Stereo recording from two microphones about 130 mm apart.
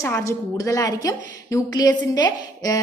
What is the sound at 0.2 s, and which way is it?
A woman's voice, 25° left (ahead or behind).